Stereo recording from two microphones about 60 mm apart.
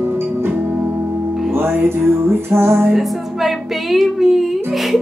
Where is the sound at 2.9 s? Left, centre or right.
Centre.